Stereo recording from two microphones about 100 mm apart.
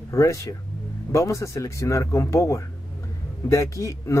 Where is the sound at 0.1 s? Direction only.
30° left (ahead or behind).